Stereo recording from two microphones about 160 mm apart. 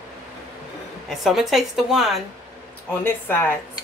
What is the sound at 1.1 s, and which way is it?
A woman's voice, centre (ahead or behind).